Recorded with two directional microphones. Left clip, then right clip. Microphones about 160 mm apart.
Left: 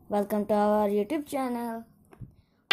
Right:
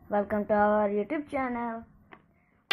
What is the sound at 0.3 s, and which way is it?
Speech, 70° left (ahead or behind).